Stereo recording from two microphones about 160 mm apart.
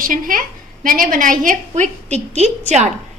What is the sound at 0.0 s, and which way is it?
A woman's voice, 60° right (ahead or behind).